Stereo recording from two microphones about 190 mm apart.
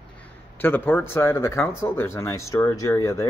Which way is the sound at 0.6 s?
10° left (ahead or behind).